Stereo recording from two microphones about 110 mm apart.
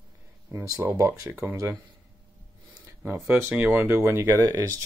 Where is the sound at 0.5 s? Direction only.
30° right (ahead or behind).